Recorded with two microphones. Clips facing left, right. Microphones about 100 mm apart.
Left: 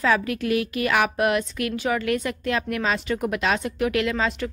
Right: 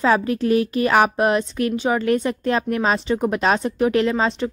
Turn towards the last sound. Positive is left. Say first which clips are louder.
# right 4 dB
turn(degrees=-30)  # may be behind; listen again after turning